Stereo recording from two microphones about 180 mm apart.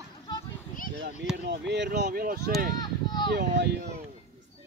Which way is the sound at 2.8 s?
25° left (ahead or behind).